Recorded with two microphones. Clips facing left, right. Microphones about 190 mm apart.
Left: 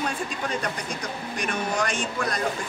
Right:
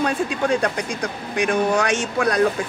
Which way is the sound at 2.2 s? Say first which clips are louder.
Right 12 dB; 65° right (ahead or behind).